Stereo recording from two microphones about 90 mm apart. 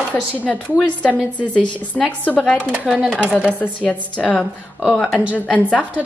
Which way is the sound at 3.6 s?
15° left (ahead or behind).